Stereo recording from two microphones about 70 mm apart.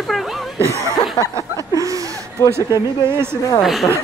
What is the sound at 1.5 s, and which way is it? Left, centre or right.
Chuckle, right.